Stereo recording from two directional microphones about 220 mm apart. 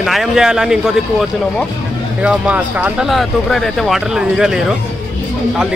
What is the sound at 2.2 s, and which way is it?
Speech, 5° right (ahead or behind).